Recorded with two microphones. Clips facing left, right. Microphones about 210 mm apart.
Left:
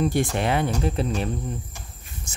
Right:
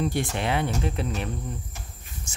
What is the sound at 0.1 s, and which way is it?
Speech, 45° left (ahead or behind).